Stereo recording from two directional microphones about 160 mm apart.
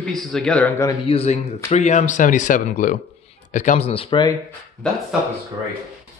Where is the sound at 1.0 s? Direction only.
40° left (ahead or behind).